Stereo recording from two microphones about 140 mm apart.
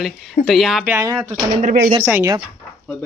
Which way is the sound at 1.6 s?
60° right (ahead or behind).